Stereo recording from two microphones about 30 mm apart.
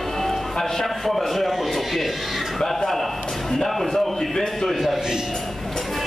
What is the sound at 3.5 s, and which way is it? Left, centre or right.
A man's voice, centre.